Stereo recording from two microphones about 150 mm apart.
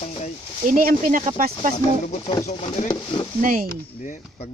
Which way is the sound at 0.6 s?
65° right (ahead or behind).